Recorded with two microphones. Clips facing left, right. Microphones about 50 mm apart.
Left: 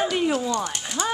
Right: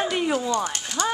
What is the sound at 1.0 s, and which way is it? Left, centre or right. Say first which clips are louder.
Speech: right 1 dB; centre.